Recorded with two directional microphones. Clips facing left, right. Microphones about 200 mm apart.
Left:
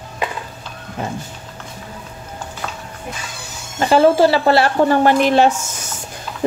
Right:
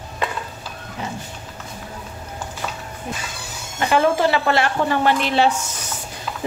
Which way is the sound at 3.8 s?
35° left (ahead or behind).